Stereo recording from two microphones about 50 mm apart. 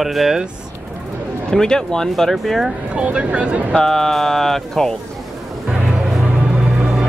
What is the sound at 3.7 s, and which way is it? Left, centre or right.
Speech, centre.